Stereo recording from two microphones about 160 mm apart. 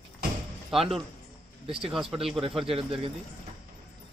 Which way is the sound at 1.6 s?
35° right (ahead or behind).